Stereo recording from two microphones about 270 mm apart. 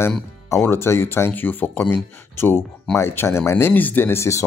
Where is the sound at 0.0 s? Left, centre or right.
Centre.